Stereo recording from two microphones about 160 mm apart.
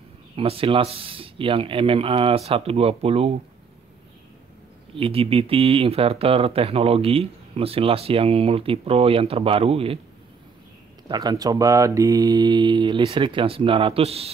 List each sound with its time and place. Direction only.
0.4 s speech: 35° right (ahead or behind)
4.9 s speech: 35° right (ahead or behind)
11.1 s speech: 25° right (ahead or behind)